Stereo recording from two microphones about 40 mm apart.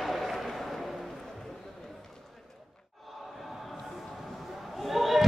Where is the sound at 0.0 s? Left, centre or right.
Centre.